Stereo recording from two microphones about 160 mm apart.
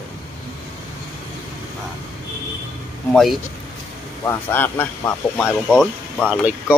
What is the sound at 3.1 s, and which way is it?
Speech, centre (ahead or behind).